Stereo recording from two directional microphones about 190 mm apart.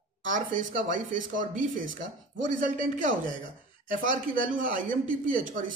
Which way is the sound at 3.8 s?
45° right (ahead or behind).